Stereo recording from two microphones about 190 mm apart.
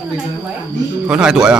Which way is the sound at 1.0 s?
5° right (ahead or behind).